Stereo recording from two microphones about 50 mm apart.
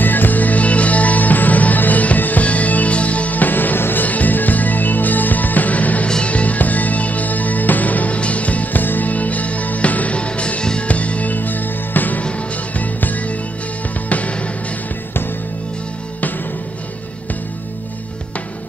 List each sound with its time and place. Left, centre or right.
0.0 s music: left